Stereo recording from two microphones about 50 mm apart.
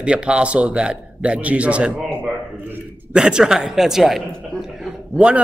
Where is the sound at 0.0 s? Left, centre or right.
Right.